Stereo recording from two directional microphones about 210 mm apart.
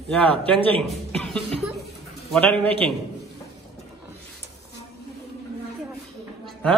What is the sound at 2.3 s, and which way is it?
Speech, 5° left (ahead or behind).